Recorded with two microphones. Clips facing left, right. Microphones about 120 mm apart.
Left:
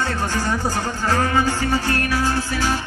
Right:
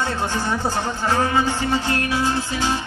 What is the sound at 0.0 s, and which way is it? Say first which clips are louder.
Music: even; 15° right (ahead or behind).